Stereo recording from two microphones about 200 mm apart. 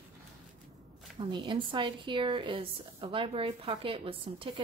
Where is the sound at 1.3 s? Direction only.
25° right (ahead or behind).